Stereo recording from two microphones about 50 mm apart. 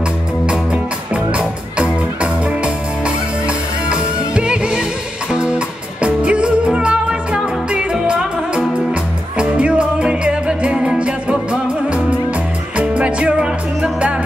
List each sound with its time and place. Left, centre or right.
1.1 s music: right